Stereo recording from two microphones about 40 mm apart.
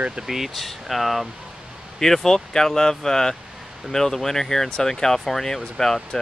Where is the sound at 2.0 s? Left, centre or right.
Centre.